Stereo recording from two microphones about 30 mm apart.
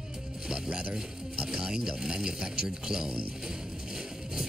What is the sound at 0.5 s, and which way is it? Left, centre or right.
Speech, right.